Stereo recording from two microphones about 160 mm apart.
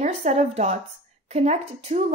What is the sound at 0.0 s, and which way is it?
A woman's voice, 45° right (ahead or behind).